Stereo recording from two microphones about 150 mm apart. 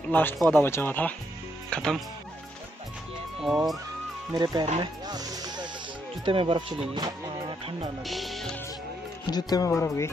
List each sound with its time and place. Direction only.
0.1 s speech: 15° left (ahead or behind)
3.3 s speech: 5° right (ahead or behind)
4.3 s speech: 25° right (ahead or behind)
5.0 s music: 25° right (ahead or behind)
6.2 s speech: 35° right (ahead or behind)
8.0 s speech: centre (ahead or behind)
9.2 s speech: 25° left (ahead or behind)